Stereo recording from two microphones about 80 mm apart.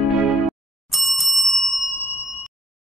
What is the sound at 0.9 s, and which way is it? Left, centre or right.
Bicycle bell, centre.